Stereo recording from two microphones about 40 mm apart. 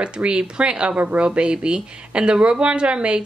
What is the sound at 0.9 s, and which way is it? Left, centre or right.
Speech, right.